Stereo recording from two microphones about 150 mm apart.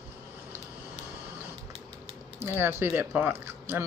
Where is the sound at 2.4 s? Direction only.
15° right (ahead or behind).